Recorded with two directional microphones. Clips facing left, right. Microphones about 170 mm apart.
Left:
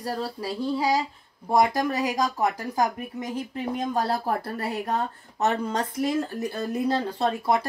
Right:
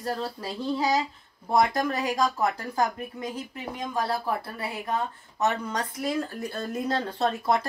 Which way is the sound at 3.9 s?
40° left (ahead or behind).